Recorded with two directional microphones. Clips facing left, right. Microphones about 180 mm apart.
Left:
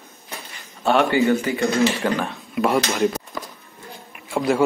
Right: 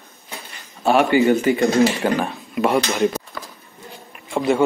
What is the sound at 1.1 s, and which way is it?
Speech, 15° right (ahead or behind).